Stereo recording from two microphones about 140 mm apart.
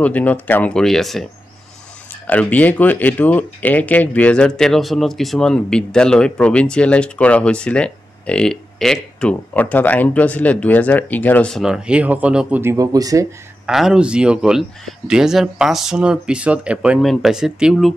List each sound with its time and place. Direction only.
0.0 s speech: 10° left (ahead or behind)
2.2 s speech: 10° left (ahead or behind); by 12.7 s 10° right (ahead or behind)
12.7 s speech: 25° right (ahead or behind)
13.7 s speech: 5° right (ahead or behind)